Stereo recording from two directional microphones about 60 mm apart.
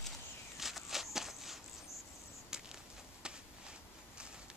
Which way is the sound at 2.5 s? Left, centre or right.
Centre.